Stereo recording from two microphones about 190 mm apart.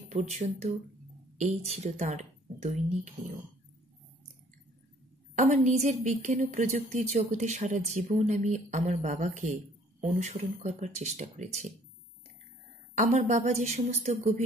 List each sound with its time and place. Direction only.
0.1 s a woman's voice: 35° right (ahead or behind)
5.3 s a woman's voice: 40° right (ahead or behind)
12.9 s a woman's voice: 40° right (ahead or behind)